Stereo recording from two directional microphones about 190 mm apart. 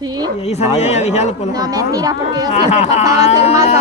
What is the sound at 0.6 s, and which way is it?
Speech, 35° left (ahead or behind).